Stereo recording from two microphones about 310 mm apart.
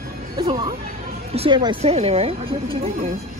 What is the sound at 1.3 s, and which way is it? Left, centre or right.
Speech, centre.